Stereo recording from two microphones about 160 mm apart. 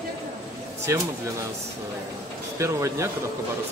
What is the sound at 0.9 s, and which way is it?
Speech, 20° right (ahead or behind).